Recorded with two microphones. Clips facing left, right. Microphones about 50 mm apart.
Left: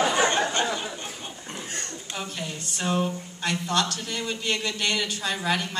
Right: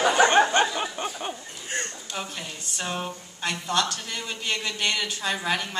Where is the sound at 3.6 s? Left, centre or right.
Right.